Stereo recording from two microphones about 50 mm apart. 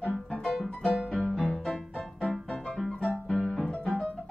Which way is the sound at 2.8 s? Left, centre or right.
Centre.